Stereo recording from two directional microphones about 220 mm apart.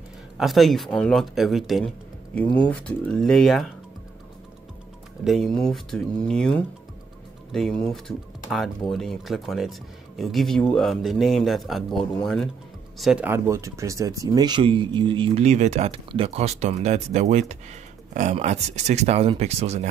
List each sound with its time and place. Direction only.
0.4 s speech: centre (ahead or behind)
5.2 s speech: centre (ahead or behind); by 19.9 s 30° right (ahead or behind)